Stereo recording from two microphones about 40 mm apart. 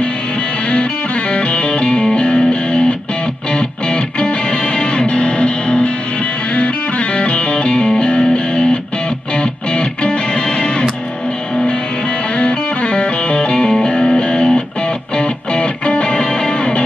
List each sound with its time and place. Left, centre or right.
1.3 s music: left
12.4 s music: left